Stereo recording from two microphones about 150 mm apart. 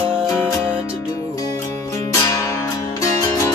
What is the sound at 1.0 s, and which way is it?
Music, 20° left (ahead or behind).